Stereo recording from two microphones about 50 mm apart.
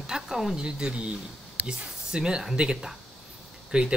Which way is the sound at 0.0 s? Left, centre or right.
Centre.